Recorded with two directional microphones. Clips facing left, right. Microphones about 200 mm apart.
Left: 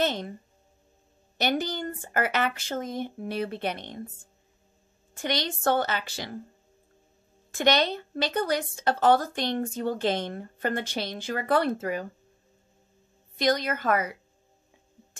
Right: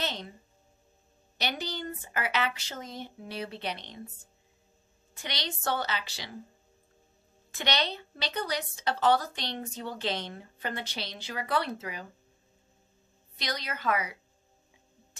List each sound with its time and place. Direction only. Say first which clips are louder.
0.0 s speech: left 8 dB; 50° left (ahead or behind)
1.4 s speech: left 7 dB; 50° left (ahead or behind)
5.1 s speech: left 8 dB; 50° left (ahead or behind)
7.5 s speech: left 8 dB; 50° left (ahead or behind)
13.4 s speech: left 11 dB; 50° left (ahead or behind)